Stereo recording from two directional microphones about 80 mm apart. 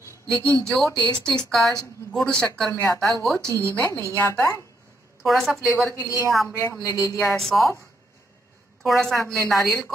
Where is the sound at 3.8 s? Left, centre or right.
Left.